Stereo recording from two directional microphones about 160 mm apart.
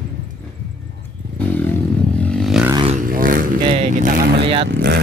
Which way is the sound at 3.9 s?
55° right (ahead or behind).